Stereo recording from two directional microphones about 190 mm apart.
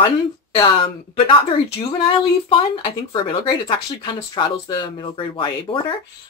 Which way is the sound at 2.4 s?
25° left (ahead or behind).